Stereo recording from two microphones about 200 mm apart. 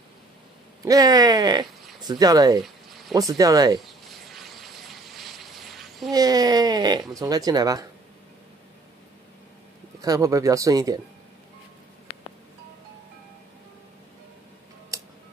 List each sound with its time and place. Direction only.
0.8 s speech: 15° right (ahead or behind)
4.1 s vehicle: centre (ahead or behind)
6.1 s speech: 20° right (ahead or behind)
10.0 s speech: 15° right (ahead or behind)